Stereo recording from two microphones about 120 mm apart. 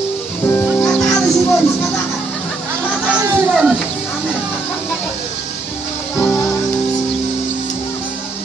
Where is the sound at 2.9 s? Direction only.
5° right (ahead or behind).